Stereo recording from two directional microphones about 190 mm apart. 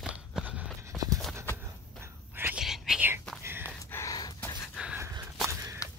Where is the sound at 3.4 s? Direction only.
10° right (ahead or behind).